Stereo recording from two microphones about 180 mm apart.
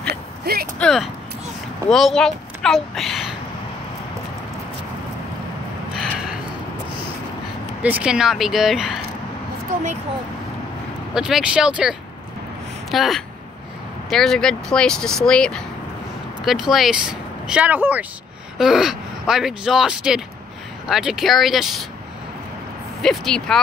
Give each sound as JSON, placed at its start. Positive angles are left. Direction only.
{"t": 0.1, "sound": "a sound", "side_deg": -55}
{"t": 0.7, "sound": "speech", "side_deg": 0}
{"t": 5.9, "sound": "a sound", "side_deg": 0}
{"t": 7.8, "sound": "speech", "side_deg": -5}
{"t": 11.1, "sound": "speech", "side_deg": -5}
{"t": 12.9, "sound": "speech", "side_deg": 0}
{"t": 23.0, "sound": "speech", "side_deg": 5}